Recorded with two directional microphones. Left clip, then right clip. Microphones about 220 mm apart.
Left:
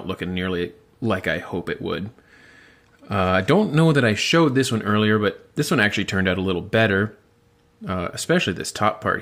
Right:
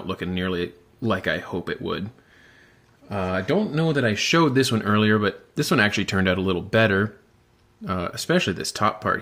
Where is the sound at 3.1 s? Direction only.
25° left (ahead or behind).